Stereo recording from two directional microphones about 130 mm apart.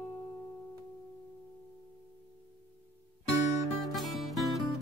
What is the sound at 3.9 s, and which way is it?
Music, centre (ahead or behind).